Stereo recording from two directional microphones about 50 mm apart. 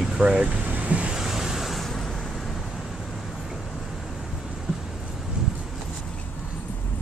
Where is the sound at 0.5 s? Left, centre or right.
Right.